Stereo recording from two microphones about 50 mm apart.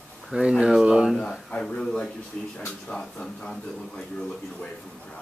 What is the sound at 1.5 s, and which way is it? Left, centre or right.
Speech, centre.